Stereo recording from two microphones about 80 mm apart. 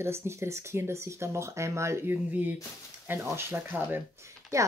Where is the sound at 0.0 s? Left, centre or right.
Right.